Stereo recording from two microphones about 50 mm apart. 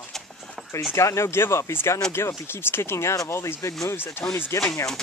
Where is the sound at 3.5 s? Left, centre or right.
Left.